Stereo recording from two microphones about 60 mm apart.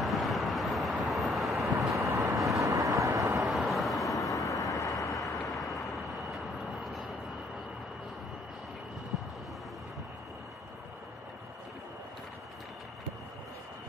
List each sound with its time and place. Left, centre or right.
0.0 s vehicle: centre
2.0 s vehicle: right
2.5 s vehicle: right
3.4 s vehicle: centre
4.4 s vehicle: left
5.1 s vehicle: centre